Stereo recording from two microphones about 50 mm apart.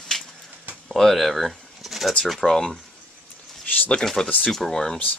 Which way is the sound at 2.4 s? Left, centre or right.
Centre.